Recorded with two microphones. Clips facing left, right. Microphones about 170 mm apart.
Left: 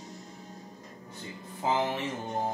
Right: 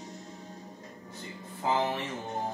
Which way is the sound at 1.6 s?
15° left (ahead or behind).